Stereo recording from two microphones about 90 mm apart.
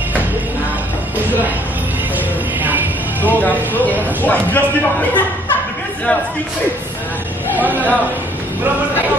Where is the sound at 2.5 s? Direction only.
20° right (ahead or behind).